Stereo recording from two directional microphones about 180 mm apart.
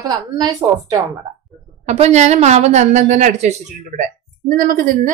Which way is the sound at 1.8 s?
40° right (ahead or behind).